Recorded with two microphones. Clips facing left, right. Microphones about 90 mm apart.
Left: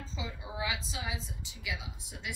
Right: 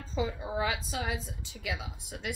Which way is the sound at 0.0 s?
50° right (ahead or behind).